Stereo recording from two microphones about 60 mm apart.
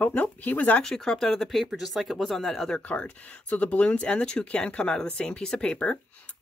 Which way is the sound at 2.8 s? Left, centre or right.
Left.